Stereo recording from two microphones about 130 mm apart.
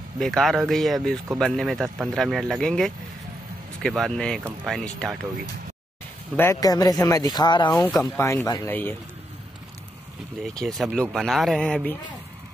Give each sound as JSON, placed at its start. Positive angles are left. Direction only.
{"t": 0.2, "sound": "speech", "side_deg": 0}
{"t": 6.3, "sound": "speech", "side_deg": 20}
{"t": 8.2, "sound": "speech", "side_deg": 20}
{"t": 8.6, "sound": "a man's voice", "side_deg": 15}
{"t": 10.4, "sound": "speech", "side_deg": 0}